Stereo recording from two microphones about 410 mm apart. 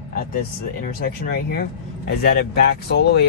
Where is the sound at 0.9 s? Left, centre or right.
Left.